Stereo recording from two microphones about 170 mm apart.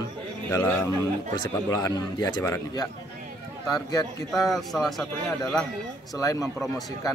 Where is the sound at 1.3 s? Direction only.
20° left (ahead or behind).